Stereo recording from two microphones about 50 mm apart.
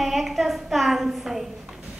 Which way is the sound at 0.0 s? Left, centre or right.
Centre.